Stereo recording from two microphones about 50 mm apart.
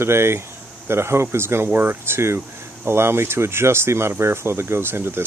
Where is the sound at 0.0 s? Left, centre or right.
Right.